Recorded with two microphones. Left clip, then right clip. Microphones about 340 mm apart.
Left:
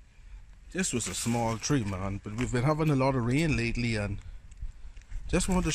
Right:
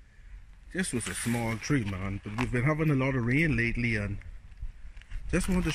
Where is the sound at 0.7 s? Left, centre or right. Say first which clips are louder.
Left 1 dB; centre.